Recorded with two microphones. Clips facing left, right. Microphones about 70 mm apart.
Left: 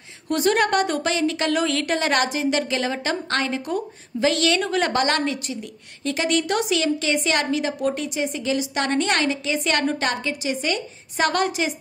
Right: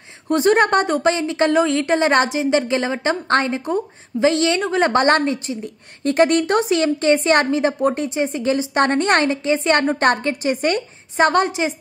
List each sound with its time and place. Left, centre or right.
0.3 s a woman's voice: right
6.1 s a woman's voice: right
11.1 s a woman's voice: right